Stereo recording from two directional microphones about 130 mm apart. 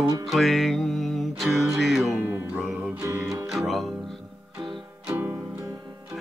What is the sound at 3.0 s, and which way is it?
Music, 25° right (ahead or behind).